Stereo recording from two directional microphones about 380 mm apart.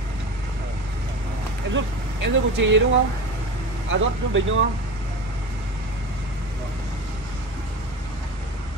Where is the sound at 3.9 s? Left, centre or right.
Right.